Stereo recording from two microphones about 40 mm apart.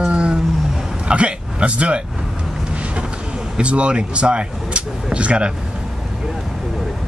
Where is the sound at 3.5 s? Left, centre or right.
Right.